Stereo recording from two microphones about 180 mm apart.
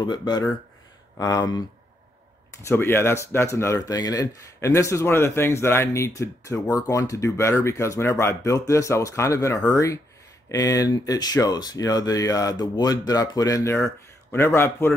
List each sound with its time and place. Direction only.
0.0 s speech: 25° left (ahead or behind)
2.6 s speech: 15° left (ahead or behind)